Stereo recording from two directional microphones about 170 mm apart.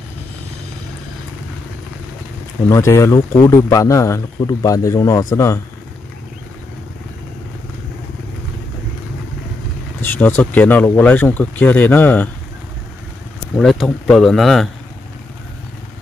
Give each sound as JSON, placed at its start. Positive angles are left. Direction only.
{"t": 2.7, "sound": "speech", "side_deg": 15}
{"t": 10.0, "sound": "speech", "side_deg": 10}
{"t": 13.6, "sound": "speech", "side_deg": 5}